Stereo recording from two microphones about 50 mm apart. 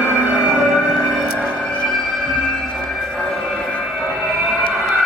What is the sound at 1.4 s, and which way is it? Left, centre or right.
Music, left.